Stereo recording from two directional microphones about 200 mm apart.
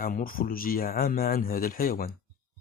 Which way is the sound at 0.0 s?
45° left (ahead or behind).